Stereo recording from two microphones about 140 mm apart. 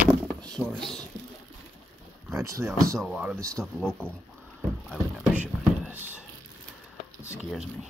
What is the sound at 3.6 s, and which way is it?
Speech, 5° left (ahead or behind).